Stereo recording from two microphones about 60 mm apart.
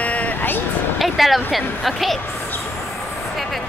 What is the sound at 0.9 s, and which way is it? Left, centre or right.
Speech, centre.